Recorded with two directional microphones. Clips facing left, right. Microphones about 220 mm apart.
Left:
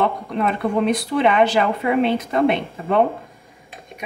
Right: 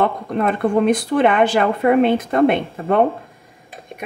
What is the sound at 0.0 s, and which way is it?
Speech, 50° right (ahead or behind).